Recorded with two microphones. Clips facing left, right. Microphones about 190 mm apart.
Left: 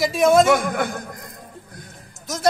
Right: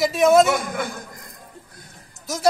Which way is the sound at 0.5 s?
55° left (ahead or behind).